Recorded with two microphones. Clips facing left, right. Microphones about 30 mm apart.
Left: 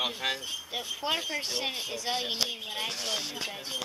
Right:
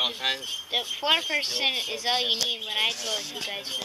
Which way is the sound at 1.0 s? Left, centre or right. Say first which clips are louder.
Right 7 dB; right.